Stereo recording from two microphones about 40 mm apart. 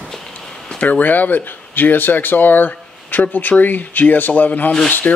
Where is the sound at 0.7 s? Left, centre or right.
Left.